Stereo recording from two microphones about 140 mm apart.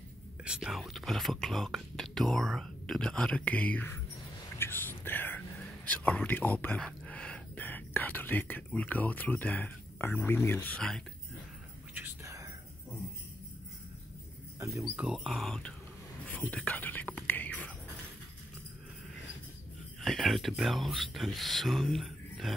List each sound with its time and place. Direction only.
0.5 s speech: 5° right (ahead or behind)
4.6 s whispering: 15° left (ahead or behind)
5.9 s speech: 10° left (ahead or behind)
11.9 s whispering: 20° right (ahead or behind)
14.8 s speech: 5° right (ahead or behind)
16.3 s whispering: 10° left (ahead or behind)
20.0 s speech: centre (ahead or behind)